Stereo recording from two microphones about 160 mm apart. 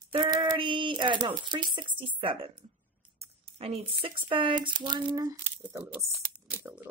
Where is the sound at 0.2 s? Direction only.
25° right (ahead or behind).